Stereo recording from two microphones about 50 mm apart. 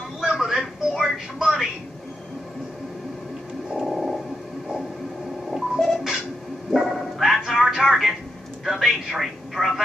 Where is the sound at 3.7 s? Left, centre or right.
Centre.